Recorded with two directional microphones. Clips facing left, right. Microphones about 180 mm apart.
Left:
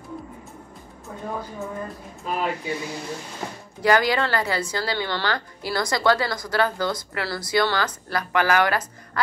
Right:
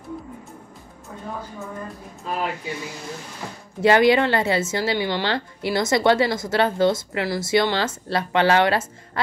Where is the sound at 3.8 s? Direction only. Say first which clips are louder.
Right 4 dB; 25° right (ahead or behind).